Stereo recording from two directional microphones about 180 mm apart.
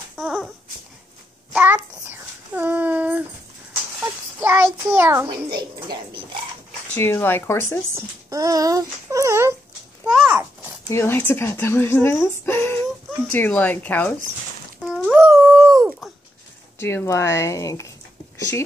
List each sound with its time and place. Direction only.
0.1 s a sound: 5° right (ahead or behind)
1.5 s child singing: 10° right (ahead or behind)
4.0 s a sound: 10° right (ahead or behind)
5.6 s speech: 25° right (ahead or behind)
7.0 s speech: 10° left (ahead or behind)
7.9 s speech: 20° right (ahead or behind)
10.0 s a sound: 10° right (ahead or behind)
10.9 s speech: 15° left (ahead or behind)
14.8 s dog: 5° right (ahead or behind)
16.8 s speech: 15° left (ahead or behind)